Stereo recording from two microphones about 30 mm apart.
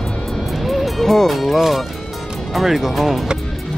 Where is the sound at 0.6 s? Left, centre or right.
Centre.